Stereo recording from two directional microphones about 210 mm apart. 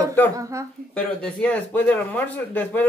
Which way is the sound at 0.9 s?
5° left (ahead or behind).